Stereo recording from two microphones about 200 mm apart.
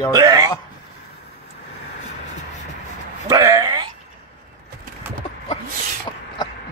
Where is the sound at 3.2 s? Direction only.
20° right (ahead or behind).